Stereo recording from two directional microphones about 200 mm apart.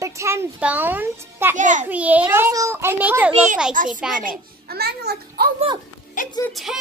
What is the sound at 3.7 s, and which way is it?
Speech, 40° right (ahead or behind).